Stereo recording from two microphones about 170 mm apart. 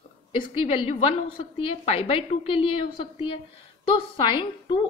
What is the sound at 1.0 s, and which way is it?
A woman's voice, 35° left (ahead or behind).